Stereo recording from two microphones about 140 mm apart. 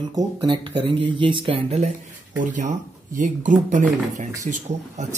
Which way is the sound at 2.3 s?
65° right (ahead or behind).